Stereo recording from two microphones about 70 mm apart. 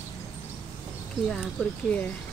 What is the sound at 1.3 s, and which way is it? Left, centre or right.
Speech, centre.